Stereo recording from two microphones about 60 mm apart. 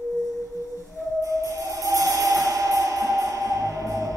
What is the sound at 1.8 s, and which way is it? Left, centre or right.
Music, right.